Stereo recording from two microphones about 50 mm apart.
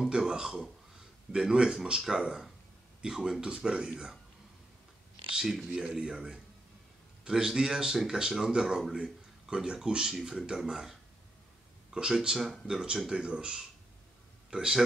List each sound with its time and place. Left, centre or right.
0.0 s speech: centre
5.3 s speech: centre